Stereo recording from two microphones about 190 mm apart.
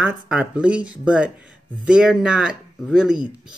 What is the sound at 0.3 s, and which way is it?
Speech, 5° right (ahead or behind).